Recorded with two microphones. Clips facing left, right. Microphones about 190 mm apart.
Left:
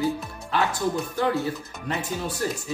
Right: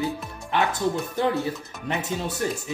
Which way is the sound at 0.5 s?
20° right (ahead or behind).